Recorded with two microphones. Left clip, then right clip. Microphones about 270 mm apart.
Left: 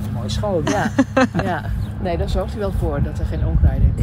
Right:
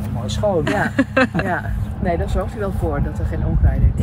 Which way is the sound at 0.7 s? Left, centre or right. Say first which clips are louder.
Even; centre.